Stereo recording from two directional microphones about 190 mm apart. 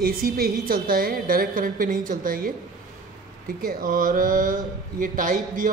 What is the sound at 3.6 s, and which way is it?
A man's voice, 45° right (ahead or behind).